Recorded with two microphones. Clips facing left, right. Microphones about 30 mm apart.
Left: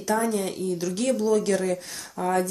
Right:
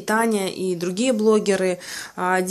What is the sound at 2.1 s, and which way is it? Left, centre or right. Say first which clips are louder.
Speech: right 3 dB; right.